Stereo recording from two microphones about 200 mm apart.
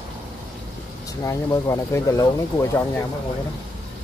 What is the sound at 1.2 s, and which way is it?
Speech, 15° left (ahead or behind).